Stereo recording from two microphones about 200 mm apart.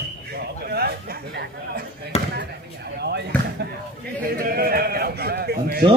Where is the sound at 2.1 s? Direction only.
30° left (ahead or behind).